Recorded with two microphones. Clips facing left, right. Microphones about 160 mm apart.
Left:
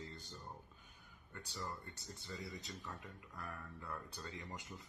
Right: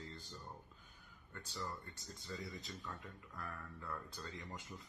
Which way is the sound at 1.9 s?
70° left (ahead or behind).